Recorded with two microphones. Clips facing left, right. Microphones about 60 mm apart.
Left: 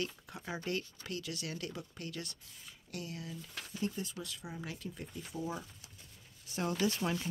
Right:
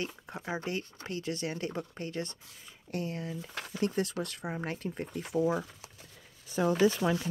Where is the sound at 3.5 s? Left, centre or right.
Right.